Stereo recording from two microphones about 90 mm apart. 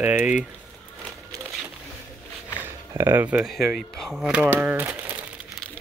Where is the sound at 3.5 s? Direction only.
Centre (ahead or behind).